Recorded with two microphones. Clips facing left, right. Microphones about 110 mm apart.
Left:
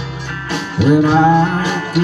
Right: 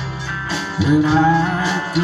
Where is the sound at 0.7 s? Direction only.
60° left (ahead or behind).